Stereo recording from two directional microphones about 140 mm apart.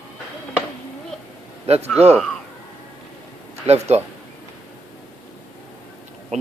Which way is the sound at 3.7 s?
50° right (ahead or behind).